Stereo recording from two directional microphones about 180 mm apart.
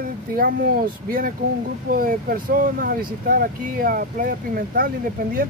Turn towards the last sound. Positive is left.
turn(degrees=-50)  # may be behind; listen again after turning